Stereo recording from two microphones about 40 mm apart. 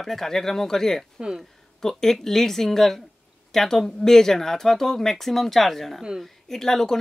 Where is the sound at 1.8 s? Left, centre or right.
Centre.